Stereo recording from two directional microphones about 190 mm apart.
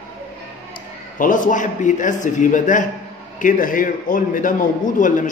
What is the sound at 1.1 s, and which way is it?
A man's voice, 45° left (ahead or behind).